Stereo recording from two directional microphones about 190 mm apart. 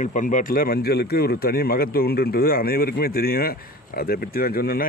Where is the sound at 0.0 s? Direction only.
40° left (ahead or behind).